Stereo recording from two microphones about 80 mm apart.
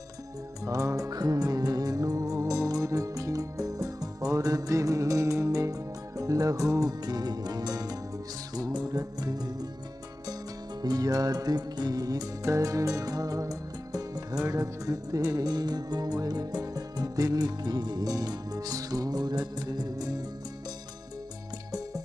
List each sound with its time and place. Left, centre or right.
0.7 s music: right
10.8 s music: right